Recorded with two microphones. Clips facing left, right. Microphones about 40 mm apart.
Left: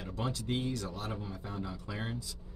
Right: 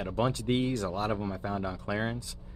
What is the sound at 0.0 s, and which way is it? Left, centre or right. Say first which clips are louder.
Speech: right 8 dB; right.